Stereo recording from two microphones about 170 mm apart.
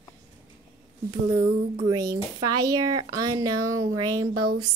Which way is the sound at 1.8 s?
20° right (ahead or behind).